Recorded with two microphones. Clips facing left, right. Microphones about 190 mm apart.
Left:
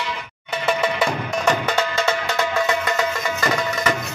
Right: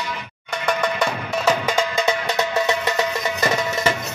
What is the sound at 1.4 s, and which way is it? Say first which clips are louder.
Music: right 1 dB; 10° right (ahead or behind).